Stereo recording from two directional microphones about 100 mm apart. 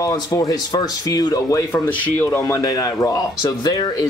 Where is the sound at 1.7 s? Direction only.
20° left (ahead or behind).